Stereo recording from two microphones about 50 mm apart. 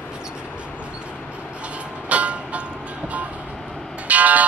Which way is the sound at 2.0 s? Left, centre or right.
Right.